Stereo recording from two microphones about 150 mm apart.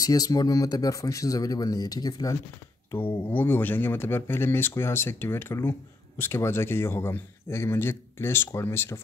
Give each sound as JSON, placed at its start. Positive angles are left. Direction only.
{"t": 0.0, "sound": "speech", "side_deg": 25}
{"t": 2.9, "sound": "speech", "side_deg": 15}